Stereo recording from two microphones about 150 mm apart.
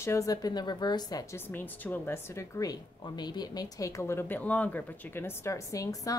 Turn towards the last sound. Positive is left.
turn(degrees=20)  # may be behind; listen again after turning